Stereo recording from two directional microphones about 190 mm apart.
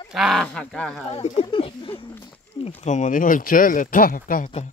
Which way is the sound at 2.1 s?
10° left (ahead or behind).